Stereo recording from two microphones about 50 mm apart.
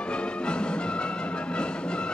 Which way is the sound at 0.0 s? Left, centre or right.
Left.